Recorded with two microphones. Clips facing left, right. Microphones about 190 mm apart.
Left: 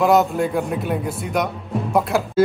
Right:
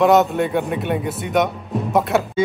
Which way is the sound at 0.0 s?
Centre (ahead or behind).